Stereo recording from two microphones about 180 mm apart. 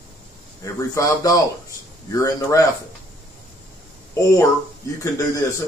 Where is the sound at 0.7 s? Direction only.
20° left (ahead or behind).